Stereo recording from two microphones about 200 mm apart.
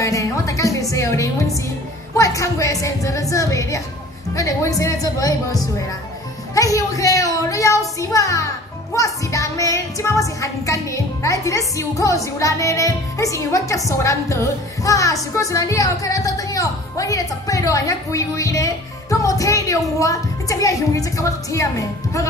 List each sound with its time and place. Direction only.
0.0 s music: 15° left (ahead or behind)
2.1 s speech: 15° left (ahead or behind)
6.5 s a sound: 15° left (ahead or behind)
8.0 s speech: 15° left (ahead or behind)